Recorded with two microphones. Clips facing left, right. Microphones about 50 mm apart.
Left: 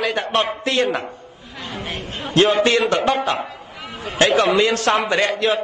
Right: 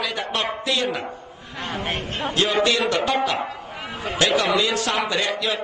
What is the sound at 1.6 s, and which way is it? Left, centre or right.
Chatter, right.